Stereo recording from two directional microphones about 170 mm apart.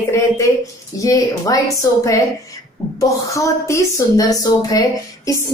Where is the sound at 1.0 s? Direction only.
20° left (ahead or behind).